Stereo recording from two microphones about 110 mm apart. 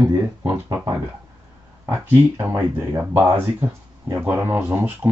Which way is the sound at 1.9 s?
20° right (ahead or behind).